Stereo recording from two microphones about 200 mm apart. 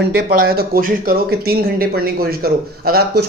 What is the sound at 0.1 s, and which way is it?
Speech, 50° right (ahead or behind).